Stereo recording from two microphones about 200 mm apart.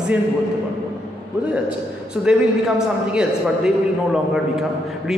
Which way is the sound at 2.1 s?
5° right (ahead or behind).